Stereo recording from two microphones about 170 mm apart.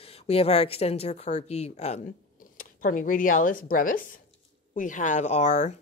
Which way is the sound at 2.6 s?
50° left (ahead or behind).